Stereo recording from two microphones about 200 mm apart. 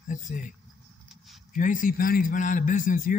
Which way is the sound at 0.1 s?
40° left (ahead or behind).